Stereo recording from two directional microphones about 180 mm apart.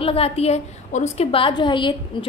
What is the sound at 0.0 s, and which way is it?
A woman's voice, 35° left (ahead or behind).